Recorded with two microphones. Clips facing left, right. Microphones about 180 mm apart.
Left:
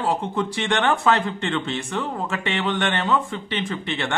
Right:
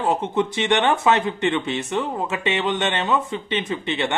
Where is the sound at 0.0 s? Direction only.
20° right (ahead or behind).